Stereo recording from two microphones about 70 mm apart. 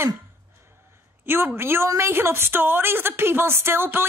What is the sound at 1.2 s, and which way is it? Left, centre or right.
A woman's voice, right.